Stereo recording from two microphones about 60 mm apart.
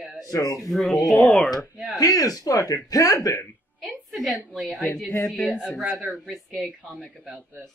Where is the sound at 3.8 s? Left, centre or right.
Centre.